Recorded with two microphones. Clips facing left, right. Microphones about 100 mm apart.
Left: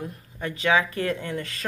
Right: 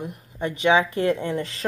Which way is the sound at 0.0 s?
20° right (ahead or behind).